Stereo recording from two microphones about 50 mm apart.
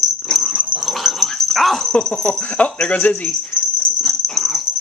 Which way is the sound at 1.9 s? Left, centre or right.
Centre.